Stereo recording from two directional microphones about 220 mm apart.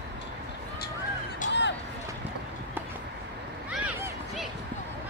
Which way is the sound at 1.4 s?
35° left (ahead or behind).